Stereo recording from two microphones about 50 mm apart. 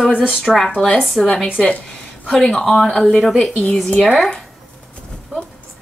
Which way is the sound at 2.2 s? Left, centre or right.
Centre.